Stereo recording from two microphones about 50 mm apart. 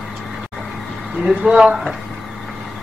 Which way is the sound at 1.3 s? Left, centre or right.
Centre.